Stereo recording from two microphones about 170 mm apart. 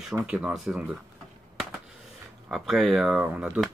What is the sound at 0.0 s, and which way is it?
Speech, 5° right (ahead or behind).